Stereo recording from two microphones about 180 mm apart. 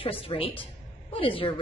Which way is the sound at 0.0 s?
30° left (ahead or behind).